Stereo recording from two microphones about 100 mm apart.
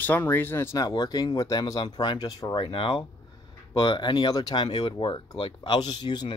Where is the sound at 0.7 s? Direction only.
40° left (ahead or behind).